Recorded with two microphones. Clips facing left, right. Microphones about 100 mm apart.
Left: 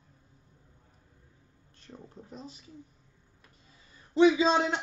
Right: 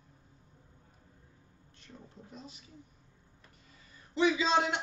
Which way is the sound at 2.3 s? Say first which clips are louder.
Left 4 dB; 35° left (ahead or behind).